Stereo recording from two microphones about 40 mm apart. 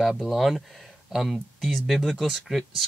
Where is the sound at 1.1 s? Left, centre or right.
Centre.